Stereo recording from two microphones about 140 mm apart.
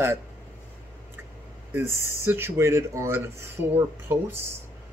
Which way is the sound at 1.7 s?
20° right (ahead or behind).